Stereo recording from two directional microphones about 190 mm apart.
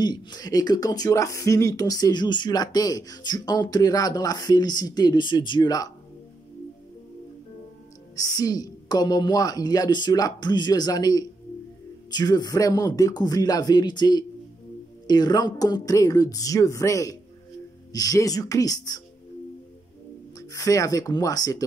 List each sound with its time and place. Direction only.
0.0 s speech: 20° left (ahead or behind)
8.2 s speech: 20° left (ahead or behind)
20.3 s speech: 20° left (ahead or behind)